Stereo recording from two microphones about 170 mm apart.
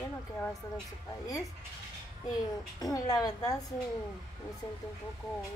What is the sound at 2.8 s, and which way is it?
Speech, 20° left (ahead or behind).